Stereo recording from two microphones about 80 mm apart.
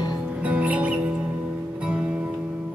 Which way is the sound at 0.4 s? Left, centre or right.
Centre.